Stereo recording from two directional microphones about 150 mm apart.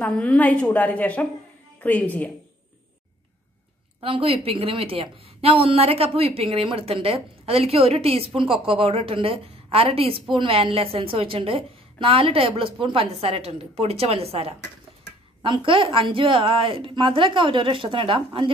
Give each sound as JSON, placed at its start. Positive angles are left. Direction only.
{"t": 0.0, "sound": "a woman's voice", "side_deg": 10}
{"t": 4.0, "sound": "a woman's voice", "side_deg": -40}